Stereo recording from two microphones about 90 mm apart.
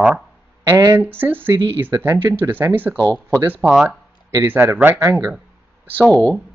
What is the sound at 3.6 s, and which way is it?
Speech, 40° right (ahead or behind).